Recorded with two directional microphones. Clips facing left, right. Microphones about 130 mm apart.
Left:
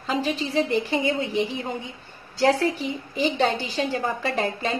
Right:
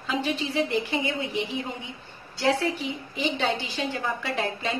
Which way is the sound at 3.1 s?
40° left (ahead or behind).